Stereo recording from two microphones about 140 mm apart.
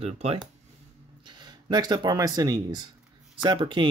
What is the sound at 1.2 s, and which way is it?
Speech, 30° right (ahead or behind).